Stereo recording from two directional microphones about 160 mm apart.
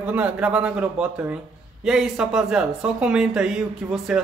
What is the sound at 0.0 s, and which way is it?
A man's voice, 10° right (ahead or behind).